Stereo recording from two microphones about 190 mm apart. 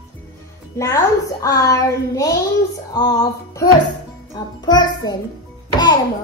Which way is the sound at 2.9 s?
20° left (ahead or behind).